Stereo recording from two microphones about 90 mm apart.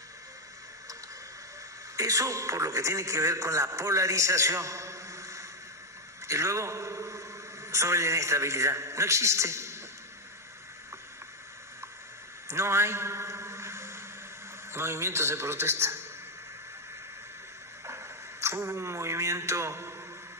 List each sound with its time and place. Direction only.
2.0 s a man's voice: 35° right (ahead or behind)
6.2 s a sound: 35° right (ahead or behind)
7.7 s a man's voice: 35° right (ahead or behind)
12.4 s a sound: 30° right (ahead or behind)
14.7 s a man's voice: 30° right (ahead or behind)
17.8 s speech: 30° right (ahead or behind)